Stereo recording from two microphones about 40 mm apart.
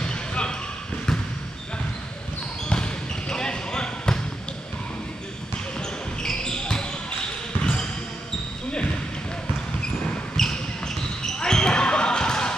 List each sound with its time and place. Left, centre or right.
0.0 s basketball bounce: left
2.7 s basketball bounce: left
5.8 s basketball bounce: centre
10.3 s basketball bounce: centre